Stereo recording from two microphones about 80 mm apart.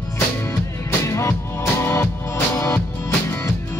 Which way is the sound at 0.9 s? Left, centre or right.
Left.